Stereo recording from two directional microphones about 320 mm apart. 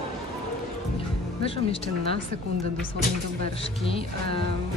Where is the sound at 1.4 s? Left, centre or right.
Centre.